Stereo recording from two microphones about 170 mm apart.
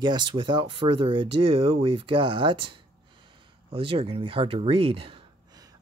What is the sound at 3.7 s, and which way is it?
Speech, 35° right (ahead or behind).